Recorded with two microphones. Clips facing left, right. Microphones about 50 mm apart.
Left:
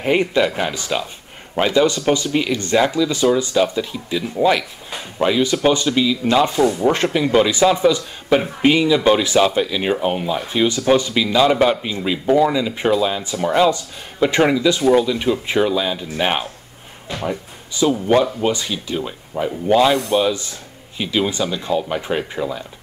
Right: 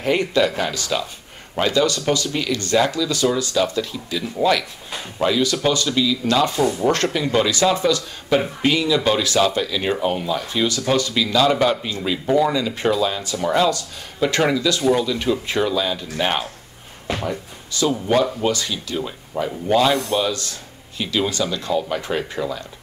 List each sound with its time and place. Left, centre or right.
0.0 s speech: centre
19.3 s speech: centre